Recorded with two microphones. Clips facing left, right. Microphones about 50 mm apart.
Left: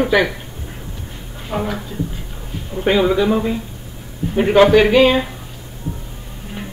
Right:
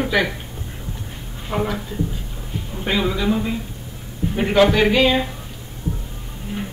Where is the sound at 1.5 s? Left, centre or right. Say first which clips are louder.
Left 1 dB; centre.